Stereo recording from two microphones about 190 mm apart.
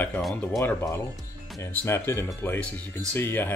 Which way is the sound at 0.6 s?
15° left (ahead or behind).